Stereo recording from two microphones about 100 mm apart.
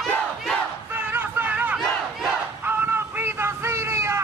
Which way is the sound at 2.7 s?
20° right (ahead or behind).